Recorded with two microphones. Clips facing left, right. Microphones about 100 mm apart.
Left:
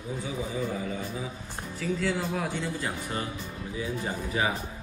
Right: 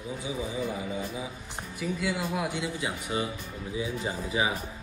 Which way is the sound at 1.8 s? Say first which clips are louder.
Left 2 dB; 15° right (ahead or behind).